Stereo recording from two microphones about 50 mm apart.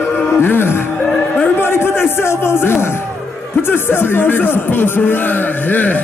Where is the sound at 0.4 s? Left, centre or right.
Left.